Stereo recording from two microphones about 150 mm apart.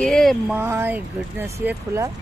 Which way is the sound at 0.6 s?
15° right (ahead or behind).